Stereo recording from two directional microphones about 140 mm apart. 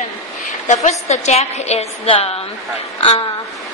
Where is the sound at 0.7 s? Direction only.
55° left (ahead or behind); by 3.3 s 40° left (ahead or behind).